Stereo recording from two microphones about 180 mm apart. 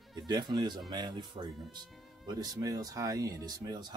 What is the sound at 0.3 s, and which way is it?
Speech, 25° right (ahead or behind).